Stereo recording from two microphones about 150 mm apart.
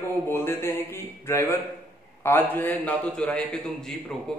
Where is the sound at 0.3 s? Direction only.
15° left (ahead or behind).